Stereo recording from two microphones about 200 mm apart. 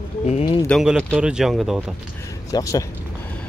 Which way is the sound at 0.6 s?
Centre (ahead or behind).